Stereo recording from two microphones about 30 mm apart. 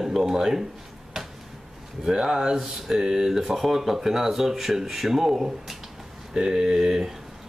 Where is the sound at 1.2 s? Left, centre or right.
Centre.